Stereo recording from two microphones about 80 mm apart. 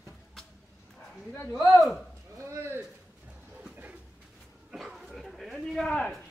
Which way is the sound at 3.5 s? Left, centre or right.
Centre.